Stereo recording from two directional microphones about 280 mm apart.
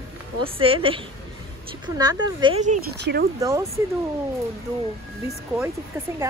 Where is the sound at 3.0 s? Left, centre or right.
Right.